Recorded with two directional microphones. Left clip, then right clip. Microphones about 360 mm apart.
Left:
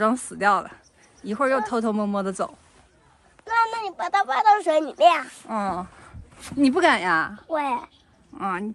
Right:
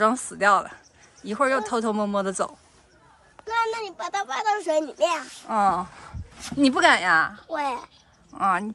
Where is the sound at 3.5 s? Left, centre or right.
Centre.